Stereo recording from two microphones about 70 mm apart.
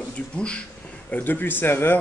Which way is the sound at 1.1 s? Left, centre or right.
Left.